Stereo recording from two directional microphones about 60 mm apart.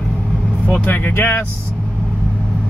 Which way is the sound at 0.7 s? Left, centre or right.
Left.